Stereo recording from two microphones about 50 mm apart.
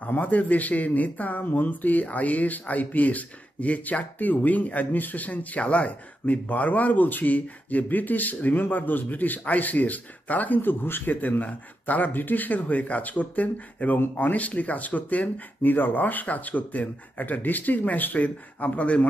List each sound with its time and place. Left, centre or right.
0.0 s speech: left